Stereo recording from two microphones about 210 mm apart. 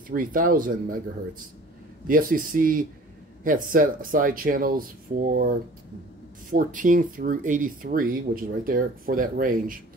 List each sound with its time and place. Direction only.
0.1 s speech: 40° right (ahead or behind)
2.0 s speech: 40° right (ahead or behind)